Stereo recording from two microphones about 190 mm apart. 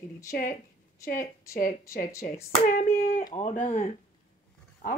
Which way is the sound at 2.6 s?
45° left (ahead or behind).